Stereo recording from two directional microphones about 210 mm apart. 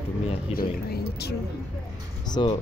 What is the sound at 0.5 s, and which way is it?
Speech, 45° left (ahead or behind).